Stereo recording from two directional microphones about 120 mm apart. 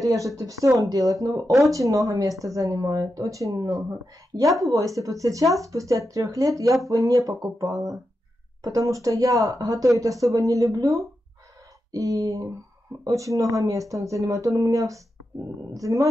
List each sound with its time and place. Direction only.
0.0 s speech: 25° right (ahead or behind)